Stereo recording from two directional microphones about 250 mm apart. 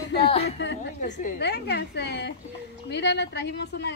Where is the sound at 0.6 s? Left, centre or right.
Left.